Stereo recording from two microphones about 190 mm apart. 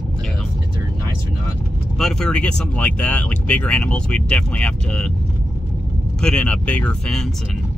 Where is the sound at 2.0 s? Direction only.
5° left (ahead or behind).